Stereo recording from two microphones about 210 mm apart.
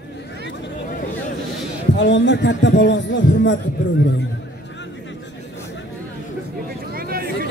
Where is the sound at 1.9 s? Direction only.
55° left (ahead or behind).